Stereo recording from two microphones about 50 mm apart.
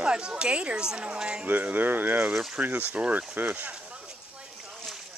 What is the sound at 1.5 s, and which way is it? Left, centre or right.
Speech, right.